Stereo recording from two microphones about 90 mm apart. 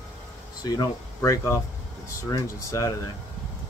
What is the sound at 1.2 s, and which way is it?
Speech, 35° left (ahead or behind).